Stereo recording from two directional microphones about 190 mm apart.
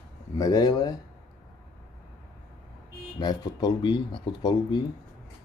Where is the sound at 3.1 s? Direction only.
20° left (ahead or behind).